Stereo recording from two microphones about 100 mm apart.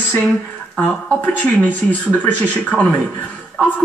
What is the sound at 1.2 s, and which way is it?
Speech, 15° left (ahead or behind).